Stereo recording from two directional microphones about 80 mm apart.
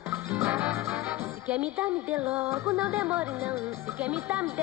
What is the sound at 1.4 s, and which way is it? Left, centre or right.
Speech, centre.